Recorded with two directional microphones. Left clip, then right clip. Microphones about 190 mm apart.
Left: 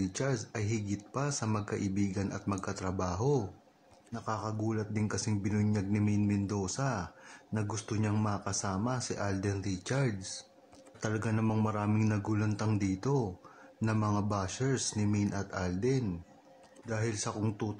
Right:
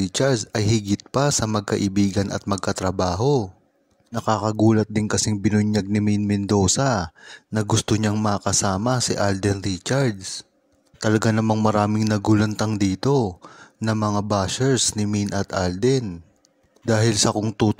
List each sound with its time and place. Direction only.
0.0 s speech: 45° right (ahead or behind)